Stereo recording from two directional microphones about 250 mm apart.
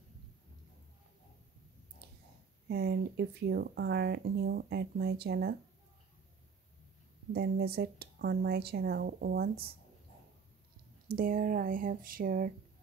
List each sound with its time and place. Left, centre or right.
2.7 s speech: right
7.3 s speech: right
11.1 s speech: right